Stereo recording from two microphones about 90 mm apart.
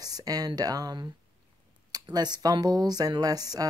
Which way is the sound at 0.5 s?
45° right (ahead or behind).